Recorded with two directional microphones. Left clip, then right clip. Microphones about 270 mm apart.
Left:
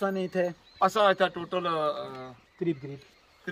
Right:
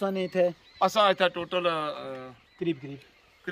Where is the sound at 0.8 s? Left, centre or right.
Centre.